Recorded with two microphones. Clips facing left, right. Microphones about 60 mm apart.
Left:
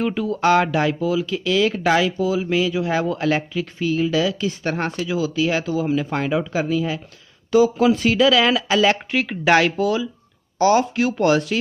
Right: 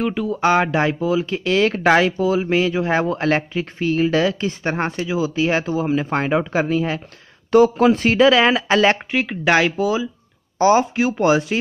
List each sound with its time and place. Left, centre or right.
0.0 s speech: centre; by 1.3 s right
1.3 s speech: right
9.1 s speech: centre
10.6 s speech: right